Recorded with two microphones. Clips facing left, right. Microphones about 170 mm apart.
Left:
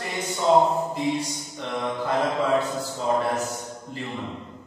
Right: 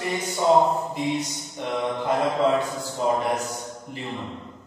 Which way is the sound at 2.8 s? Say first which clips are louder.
Right 1 dB; 15° right (ahead or behind).